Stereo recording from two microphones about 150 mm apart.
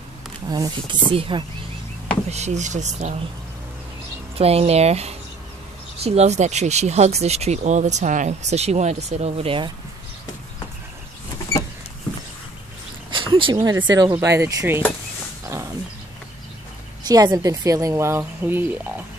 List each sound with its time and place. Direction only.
0.5 s speech: 30° right (ahead or behind)
2.2 s speech: 45° right (ahead or behind)
4.4 s speech: 45° right (ahead or behind)
13.1 s a sound: 35° right (ahead or behind)
13.7 s speech: 30° right (ahead or behind)
14.1 s speech: 20° right (ahead or behind)
15.4 s wild animals: 20° right (ahead or behind)
17.1 s speech: 25° right (ahead or behind)